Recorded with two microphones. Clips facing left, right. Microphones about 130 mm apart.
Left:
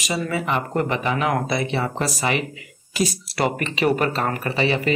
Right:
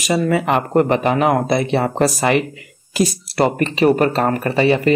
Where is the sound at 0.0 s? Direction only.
55° right (ahead or behind).